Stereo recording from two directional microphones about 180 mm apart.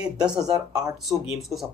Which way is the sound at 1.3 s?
Centre (ahead or behind).